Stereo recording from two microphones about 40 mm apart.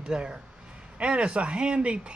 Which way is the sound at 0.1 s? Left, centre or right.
Right.